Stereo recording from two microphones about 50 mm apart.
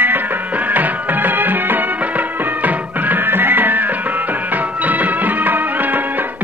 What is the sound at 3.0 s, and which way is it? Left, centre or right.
Music, right.